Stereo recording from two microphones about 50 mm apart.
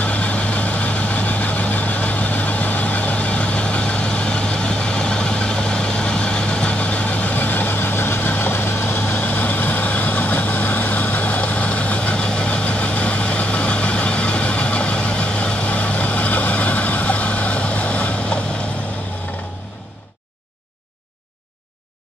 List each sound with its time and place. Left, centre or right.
0.0 s vehicle: left